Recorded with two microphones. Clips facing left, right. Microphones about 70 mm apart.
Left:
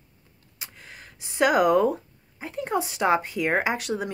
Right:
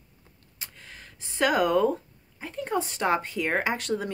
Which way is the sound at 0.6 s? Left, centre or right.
Centre.